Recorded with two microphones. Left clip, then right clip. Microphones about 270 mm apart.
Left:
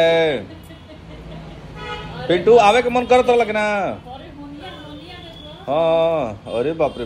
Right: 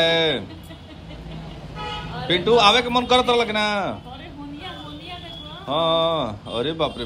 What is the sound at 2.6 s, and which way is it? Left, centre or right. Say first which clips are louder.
A man's voice: left 2 dB; centre.